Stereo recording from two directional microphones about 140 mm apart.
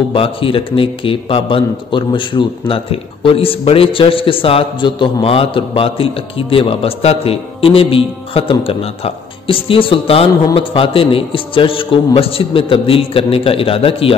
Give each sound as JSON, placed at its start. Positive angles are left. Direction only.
{"t": 0.1, "sound": "a man's voice", "side_deg": 40}